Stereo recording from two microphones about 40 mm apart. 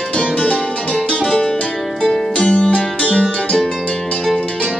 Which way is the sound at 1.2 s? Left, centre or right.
Centre.